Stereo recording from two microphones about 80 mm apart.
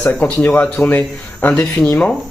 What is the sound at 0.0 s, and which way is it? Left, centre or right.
Speech, centre.